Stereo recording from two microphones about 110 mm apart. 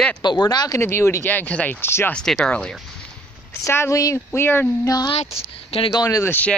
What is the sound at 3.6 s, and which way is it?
A woman's voice, 25° left (ahead or behind).